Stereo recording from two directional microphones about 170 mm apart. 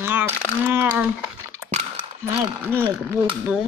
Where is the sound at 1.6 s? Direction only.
15° right (ahead or behind).